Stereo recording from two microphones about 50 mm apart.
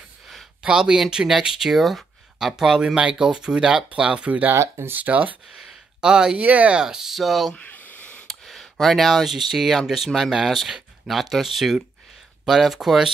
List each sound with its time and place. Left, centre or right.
0.7 s speech: centre
2.3 s speech: centre
4.6 s speech: right
4.9 s speech: right
5.6 s a sound: centre
6.4 s speech: right
6.8 s speech: centre
7.5 s a sound: left
8.3 s cutlery: centre
9.8 s speech: centre